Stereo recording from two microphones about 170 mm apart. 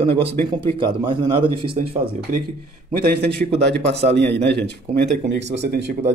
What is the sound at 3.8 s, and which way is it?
A man's voice, 90° right.